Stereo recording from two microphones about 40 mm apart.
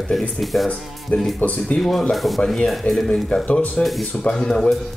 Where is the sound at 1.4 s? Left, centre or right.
Left.